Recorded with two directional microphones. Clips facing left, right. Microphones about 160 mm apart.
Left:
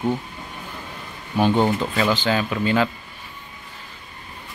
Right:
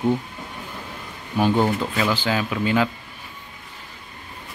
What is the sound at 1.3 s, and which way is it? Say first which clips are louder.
Speech: left 1 dB; 5° right (ahead or behind).